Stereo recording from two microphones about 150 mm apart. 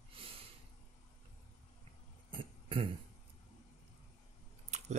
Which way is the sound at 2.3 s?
35° right (ahead or behind).